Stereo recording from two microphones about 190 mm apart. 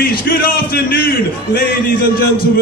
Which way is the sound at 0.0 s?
50° left (ahead or behind).